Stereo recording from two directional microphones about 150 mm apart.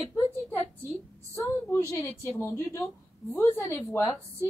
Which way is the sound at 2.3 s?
20° left (ahead or behind).